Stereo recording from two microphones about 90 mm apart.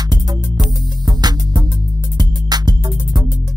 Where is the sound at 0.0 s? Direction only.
50° right (ahead or behind).